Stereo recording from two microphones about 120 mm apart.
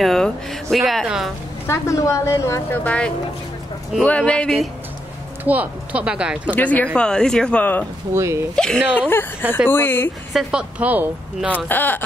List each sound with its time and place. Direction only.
0.0 s speech: centre (ahead or behind)
1.7 s a woman's voice: 25° left (ahead or behind)
2.8 s speech: 10° left (ahead or behind)
5.4 s speech: 15° right (ahead or behind)
6.5 s speech: 10° left (ahead or behind)
8.1 s speech: 25° right (ahead or behind)
8.5 s speech: 5° left (ahead or behind)
9.7 s a woman's voice: 20° left (ahead or behind)
10.3 s speech: 10° right (ahead or behind)
11.5 s speech: 15° left (ahead or behind)